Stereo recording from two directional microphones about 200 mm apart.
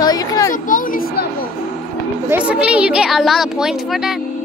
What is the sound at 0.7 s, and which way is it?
Speech, 40° left (ahead or behind).